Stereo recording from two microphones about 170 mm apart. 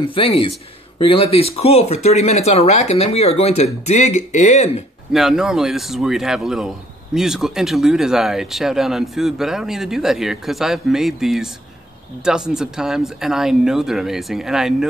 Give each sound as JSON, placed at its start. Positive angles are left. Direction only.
{"t": 0.0, "sound": "speech", "side_deg": 30}
{"t": 5.1, "sound": "speech", "side_deg": -5}